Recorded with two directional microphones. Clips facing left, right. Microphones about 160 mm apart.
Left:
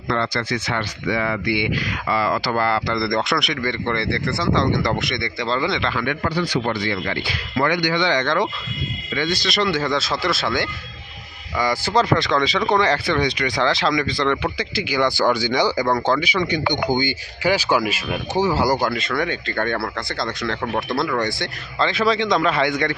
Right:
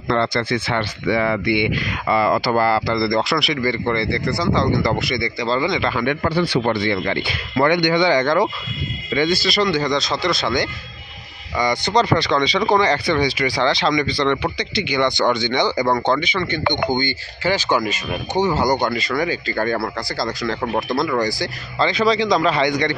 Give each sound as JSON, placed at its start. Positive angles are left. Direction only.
{"t": 0.4, "sound": "speech", "side_deg": -30}
{"t": 6.0, "sound": "speech", "side_deg": -30}
{"t": 8.0, "sound": "speech", "side_deg": -10}
{"t": 9.4, "sound": "speech", "side_deg": 0}